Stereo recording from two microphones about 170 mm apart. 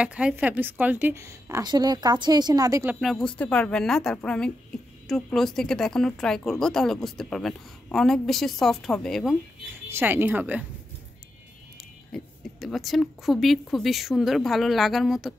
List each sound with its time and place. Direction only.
0.0 s a woman's voice: 5° right (ahead or behind)
3.0 s speech: centre (ahead or behind)
9.8 s a woman's voice: 15° right (ahead or behind)
12.1 s speech: centre (ahead or behind)